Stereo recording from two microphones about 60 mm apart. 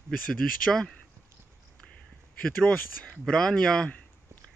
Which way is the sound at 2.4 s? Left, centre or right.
Centre.